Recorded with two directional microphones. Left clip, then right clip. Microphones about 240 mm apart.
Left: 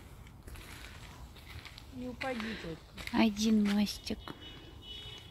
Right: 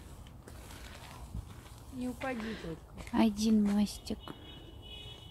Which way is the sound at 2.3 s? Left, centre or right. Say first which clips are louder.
Left 1 dB; centre.